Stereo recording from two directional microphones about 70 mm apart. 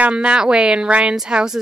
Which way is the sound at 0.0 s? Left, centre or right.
Centre.